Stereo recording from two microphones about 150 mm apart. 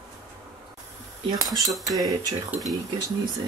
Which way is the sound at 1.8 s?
25° right (ahead or behind).